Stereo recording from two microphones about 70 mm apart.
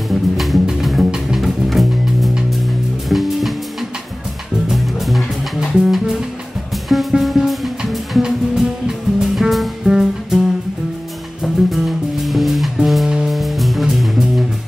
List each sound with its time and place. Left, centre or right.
0.1 s music: centre
4.6 s music: centre
11.4 s music: centre